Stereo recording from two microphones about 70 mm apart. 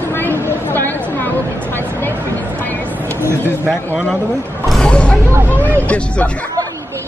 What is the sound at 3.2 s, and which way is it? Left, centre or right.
Speech, right.